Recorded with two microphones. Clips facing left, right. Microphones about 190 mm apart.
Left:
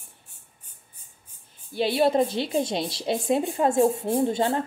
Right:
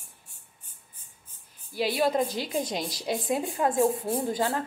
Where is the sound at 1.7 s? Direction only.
25° left (ahead or behind).